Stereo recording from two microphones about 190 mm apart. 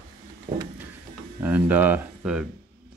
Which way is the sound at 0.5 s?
20° right (ahead or behind).